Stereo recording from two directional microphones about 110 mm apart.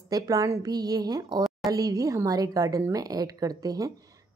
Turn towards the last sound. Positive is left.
turn(degrees=-35)  # may be behind; listen again after turning